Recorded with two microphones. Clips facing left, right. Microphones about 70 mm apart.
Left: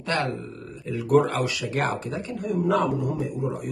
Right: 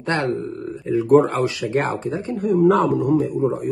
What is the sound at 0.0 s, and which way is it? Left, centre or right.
Speech, right.